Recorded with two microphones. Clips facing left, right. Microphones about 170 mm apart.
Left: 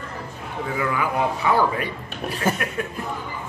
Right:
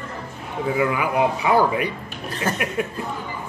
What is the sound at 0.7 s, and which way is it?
A man's voice, 15° right (ahead or behind).